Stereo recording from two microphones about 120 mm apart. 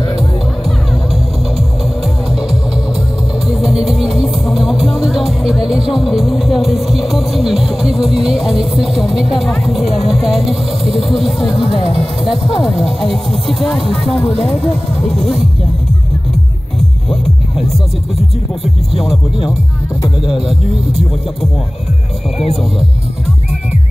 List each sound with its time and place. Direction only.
3.4 s music: centre (ahead or behind)
12.6 s speech: centre (ahead or behind)
13.8 s speech: 55° left (ahead or behind)
14.4 s speech: 5° left (ahead or behind)
17.1 s music: 5° left (ahead or behind)
18.6 s speech: centre (ahead or behind)
20.2 s speech: 5° right (ahead or behind)